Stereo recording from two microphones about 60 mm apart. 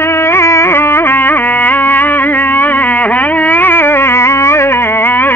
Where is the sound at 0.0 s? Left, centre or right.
Left.